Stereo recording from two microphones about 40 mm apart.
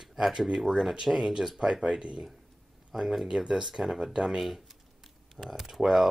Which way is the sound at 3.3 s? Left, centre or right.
Centre.